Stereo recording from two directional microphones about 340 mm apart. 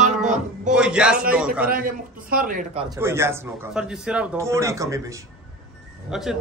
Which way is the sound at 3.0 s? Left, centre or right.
Centre.